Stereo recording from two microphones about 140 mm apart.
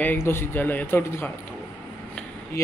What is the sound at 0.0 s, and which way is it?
Speech, 15° left (ahead or behind).